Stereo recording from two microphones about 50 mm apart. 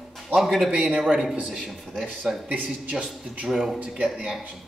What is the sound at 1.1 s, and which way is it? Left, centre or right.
Speech, right.